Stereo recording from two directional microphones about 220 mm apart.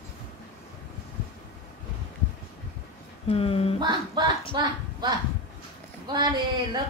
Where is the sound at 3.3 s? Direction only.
25° left (ahead or behind).